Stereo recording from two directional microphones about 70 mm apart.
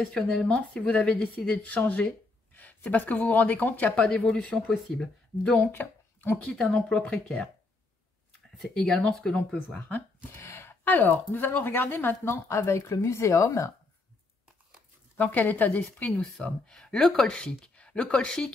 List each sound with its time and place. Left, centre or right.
0.1 s speech: centre
5.6 s speech: left
6.5 s speech: centre
8.5 s speech: centre; by 10.0 s left
10.3 s speech: left
12.4 s speech: left
15.1 s speech: left